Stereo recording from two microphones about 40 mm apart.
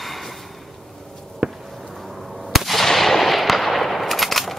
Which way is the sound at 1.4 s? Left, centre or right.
Right.